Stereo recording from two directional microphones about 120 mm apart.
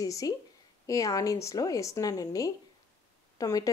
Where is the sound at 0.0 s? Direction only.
30° left (ahead or behind).